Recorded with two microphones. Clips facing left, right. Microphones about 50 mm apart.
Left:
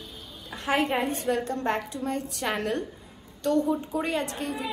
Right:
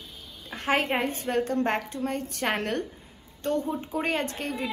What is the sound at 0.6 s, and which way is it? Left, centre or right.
A woman's voice, right.